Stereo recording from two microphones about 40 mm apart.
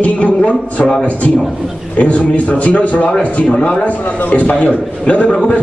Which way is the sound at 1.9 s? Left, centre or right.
Left.